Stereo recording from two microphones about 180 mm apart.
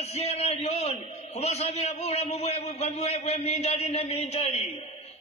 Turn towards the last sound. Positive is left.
turn(degrees=35)  # may be behind; listen again after turning